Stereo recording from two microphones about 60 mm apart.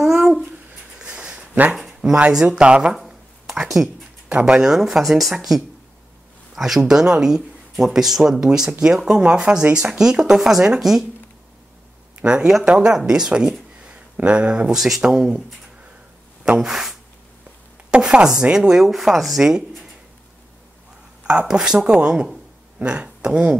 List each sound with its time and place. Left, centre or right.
0.0 s babbling: centre
0.9 s a sound: centre
1.7 s a sound: centre
2.5 s speech: centre
3.1 s a sound: centre
4.3 s speech: centre
12.2 s speech: centre
16.5 s speech: centre
17.9 s speech: centre
21.2 s speech: centre